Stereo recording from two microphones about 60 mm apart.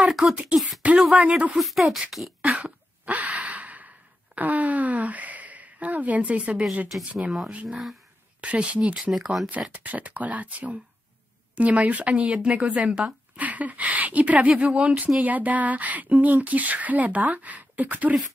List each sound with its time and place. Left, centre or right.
0.1 s speech: centre
2.6 s a sound: right
4.4 s speech: right
7.2 s speech: centre
8.4 s speech: right
9.1 s speech: centre
9.7 s speech: right
14.5 s speech: centre; by 18.1 s right